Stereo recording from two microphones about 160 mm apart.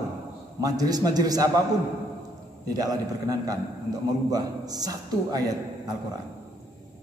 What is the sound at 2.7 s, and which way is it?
A man's voice, 25° right (ahead or behind).